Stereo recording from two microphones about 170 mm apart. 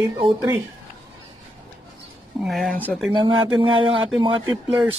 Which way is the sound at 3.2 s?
30° right (ahead or behind).